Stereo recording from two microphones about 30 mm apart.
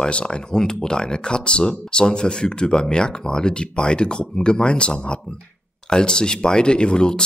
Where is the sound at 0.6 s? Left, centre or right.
Left.